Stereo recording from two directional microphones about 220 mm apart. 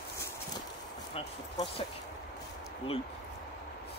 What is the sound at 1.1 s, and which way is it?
Speech, 25° left (ahead or behind).